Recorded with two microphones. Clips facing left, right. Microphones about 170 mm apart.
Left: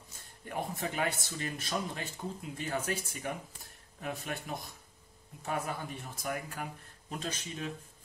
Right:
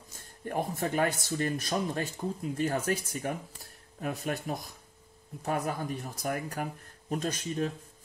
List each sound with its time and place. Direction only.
0.5 s speech: 45° right (ahead or behind)